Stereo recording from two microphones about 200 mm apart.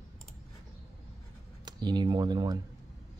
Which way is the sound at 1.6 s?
20° right (ahead or behind).